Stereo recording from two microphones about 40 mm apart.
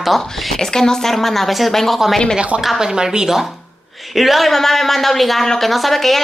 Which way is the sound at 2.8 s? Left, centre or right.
Centre.